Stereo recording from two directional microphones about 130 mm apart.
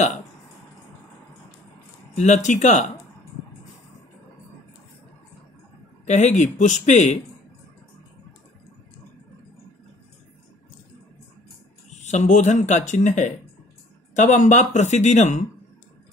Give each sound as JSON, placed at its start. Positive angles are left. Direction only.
{"t": 2.1, "sound": "speech", "side_deg": 65}
{"t": 6.0, "sound": "a man's voice", "side_deg": 65}
{"t": 11.9, "sound": "speech", "side_deg": 60}